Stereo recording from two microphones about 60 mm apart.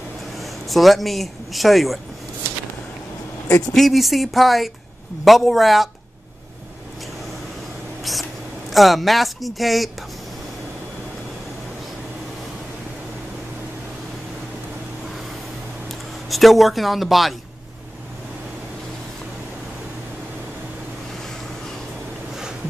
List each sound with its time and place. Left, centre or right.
0.4 s speech: centre
3.7 s speech: centre
8.0 s speech: centre
16.3 s speech: centre